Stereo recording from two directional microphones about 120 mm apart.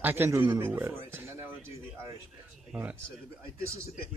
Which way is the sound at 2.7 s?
10° right (ahead or behind).